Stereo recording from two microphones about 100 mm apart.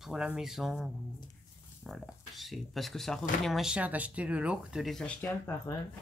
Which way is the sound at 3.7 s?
15° right (ahead or behind).